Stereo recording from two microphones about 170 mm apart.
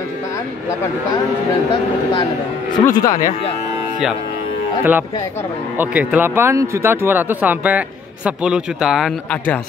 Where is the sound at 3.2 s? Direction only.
50° left (ahead or behind).